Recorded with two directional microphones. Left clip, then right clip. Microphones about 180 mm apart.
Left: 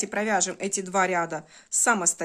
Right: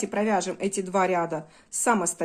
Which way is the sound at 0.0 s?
30° left (ahead or behind).